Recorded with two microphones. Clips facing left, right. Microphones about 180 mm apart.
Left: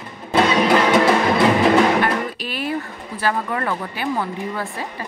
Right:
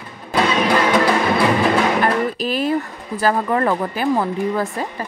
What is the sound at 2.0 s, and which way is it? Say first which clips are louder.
Music: right 3 dB; 40° right (ahead or behind).